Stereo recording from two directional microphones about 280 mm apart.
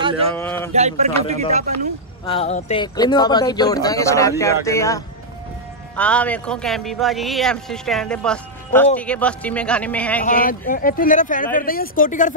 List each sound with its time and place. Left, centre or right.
0.4 s speech: centre
0.7 s speech: right
2.2 s a man's voice: left; by 10.2 s centre
10.2 s speech: left